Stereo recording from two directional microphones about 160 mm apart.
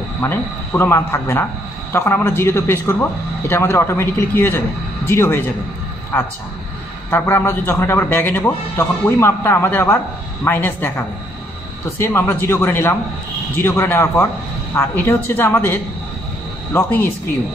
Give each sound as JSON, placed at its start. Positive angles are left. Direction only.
{"t": 0.2, "sound": "a man's voice", "side_deg": 15}